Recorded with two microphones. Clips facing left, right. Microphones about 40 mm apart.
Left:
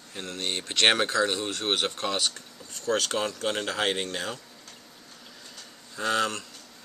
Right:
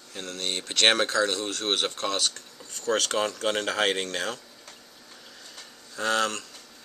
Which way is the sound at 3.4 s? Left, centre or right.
Centre.